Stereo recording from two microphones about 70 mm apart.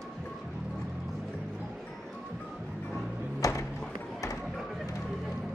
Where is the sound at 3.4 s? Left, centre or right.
Left.